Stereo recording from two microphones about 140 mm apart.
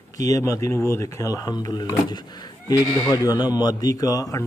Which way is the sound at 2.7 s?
30° left (ahead or behind).